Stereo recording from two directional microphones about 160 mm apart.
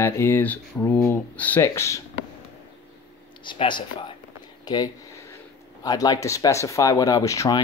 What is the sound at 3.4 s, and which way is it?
Speech, 30° left (ahead or behind).